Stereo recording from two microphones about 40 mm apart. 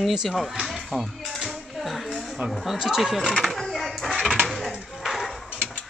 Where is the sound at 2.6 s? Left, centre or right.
Centre.